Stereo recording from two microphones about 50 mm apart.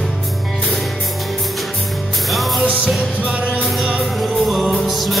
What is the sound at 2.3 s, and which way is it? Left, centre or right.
Music, centre.